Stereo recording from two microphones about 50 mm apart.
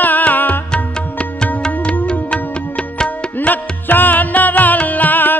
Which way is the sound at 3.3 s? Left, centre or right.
Left.